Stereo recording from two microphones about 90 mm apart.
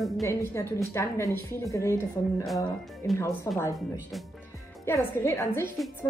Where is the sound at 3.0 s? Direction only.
30° left (ahead or behind).